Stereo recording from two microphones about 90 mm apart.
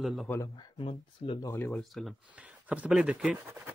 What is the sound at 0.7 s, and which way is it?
Speech, 80° left.